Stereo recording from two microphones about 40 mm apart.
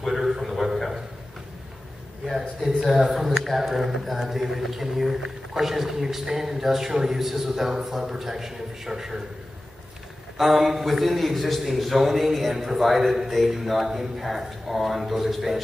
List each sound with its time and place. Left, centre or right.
0.0 s a sound: centre
2.2 s a man's voice: centre
10.3 s a man's voice: centre